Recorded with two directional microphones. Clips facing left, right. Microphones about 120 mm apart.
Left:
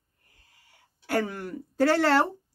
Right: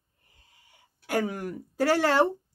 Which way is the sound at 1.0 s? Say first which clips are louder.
Even; 15° right (ahead or behind).